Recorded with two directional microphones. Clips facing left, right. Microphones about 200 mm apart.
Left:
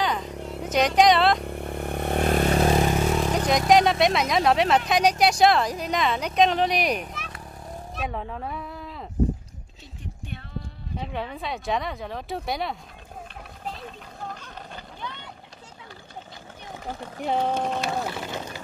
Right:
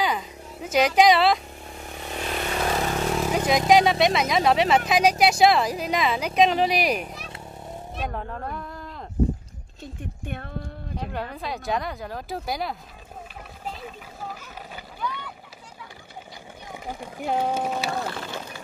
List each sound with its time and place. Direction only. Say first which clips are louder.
0.2 s a sound: left 7 dB; 70° left (ahead or behind)
0.7 s a woman's voice: right 1 dB; 5° right (ahead or behind)
1.4 s vehicle: left 9 dB; 60° left (ahead or behind); by 2.6 s 45° left (ahead or behind)
3.1 s a woman's voice: even; 5° right (ahead or behind)
7.2 s vehicle: even; 25° right (ahead or behind)
8.0 s speech: even; centre (ahead or behind)
10.2 s a sound: right 5 dB; 55° right (ahead or behind)
11.0 s a woman's voice: left 1 dB; centre (ahead or behind)
13.7 s a sound: even; 5° right (ahead or behind)
15.0 s boat: right 8 dB; 25° left (ahead or behind)
16.8 s speech: even; 10° right (ahead or behind)
18.0 s run: left 1 dB; 15° left (ahead or behind)